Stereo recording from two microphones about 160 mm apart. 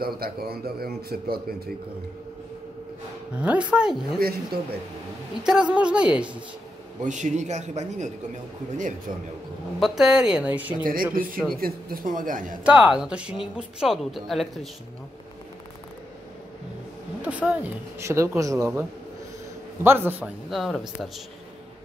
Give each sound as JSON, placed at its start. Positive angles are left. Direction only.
{"t": 0.0, "sound": "a man's voice", "side_deg": -70}
{"t": 3.3, "sound": "speech", "side_deg": -5}
{"t": 4.2, "sound": "a man's voice", "side_deg": -70}
{"t": 5.4, "sound": "speech", "side_deg": -5}
{"t": 7.0, "sound": "a man's voice", "side_deg": -50}
{"t": 9.8, "sound": "speech", "side_deg": 0}
{"t": 10.8, "sound": "speech", "side_deg": -65}
{"t": 12.6, "sound": "speech", "side_deg": -5}
{"t": 17.2, "sound": "speech", "side_deg": -10}
{"t": 19.8, "sound": "speech", "side_deg": -15}
{"t": 20.5, "sound": "speech", "side_deg": 0}